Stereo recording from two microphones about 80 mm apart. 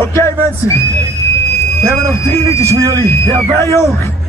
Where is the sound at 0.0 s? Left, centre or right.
Left.